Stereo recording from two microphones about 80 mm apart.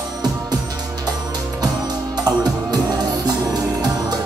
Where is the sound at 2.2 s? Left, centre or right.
Right.